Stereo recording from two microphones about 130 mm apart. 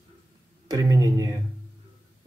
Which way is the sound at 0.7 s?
30° right (ahead or behind).